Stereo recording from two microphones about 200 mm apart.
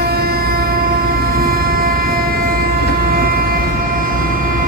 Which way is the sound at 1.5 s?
45° right (ahead or behind).